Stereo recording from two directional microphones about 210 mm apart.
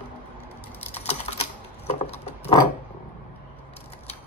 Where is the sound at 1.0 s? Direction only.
30° left (ahead or behind).